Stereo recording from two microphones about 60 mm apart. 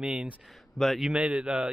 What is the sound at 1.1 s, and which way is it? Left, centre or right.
Speech, centre.